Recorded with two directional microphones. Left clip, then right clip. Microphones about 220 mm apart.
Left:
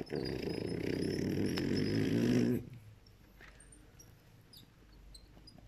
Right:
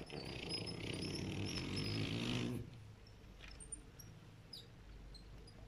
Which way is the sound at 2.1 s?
25° left (ahead or behind).